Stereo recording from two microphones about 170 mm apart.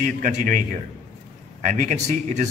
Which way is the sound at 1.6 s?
45° right (ahead or behind).